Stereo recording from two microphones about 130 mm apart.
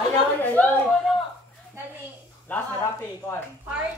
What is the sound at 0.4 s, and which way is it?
Speech, 10° left (ahead or behind).